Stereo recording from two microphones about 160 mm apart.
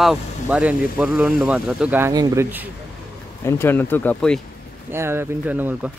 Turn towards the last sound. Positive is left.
turn(degrees=-10)  # may be behind; listen again after turning